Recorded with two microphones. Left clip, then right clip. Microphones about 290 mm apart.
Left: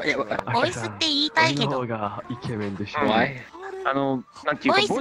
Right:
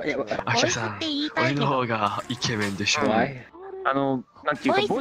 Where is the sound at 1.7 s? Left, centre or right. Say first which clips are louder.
Right 3 dB; right.